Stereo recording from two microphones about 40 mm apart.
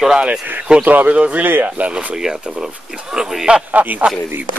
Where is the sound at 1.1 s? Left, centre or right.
Right.